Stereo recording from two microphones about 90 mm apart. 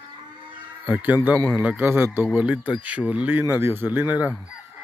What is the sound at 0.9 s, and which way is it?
A man's voice, 20° right (ahead or behind).